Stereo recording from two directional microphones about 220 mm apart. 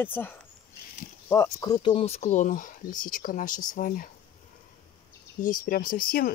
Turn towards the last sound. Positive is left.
turn(degrees=40)  # may be behind; listen again after turning